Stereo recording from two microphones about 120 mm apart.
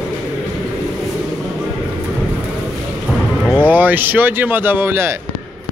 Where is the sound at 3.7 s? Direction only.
15° right (ahead or behind).